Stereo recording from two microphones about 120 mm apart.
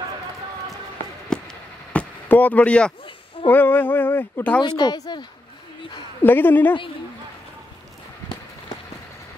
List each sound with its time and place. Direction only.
1.3 s a sound: 10° left (ahead or behind)
3.4 s speech: 15° left (ahead or behind)
4.6 s speech: 35° left (ahead or behind)
6.2 s speech: 15° left (ahead or behind)